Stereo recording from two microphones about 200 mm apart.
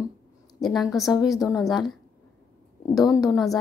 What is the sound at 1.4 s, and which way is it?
Speech, 15° left (ahead or behind).